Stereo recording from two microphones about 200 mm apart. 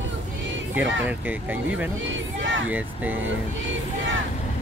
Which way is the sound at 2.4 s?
70° right (ahead or behind).